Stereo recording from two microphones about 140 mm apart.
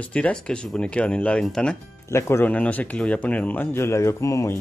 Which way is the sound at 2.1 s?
20° left (ahead or behind).